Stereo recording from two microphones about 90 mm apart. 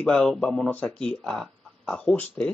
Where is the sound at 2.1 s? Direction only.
20° left (ahead or behind).